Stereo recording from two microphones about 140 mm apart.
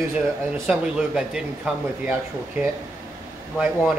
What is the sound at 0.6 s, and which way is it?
Speech, 5° right (ahead or behind).